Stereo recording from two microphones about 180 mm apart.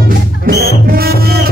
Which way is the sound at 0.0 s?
55° right (ahead or behind).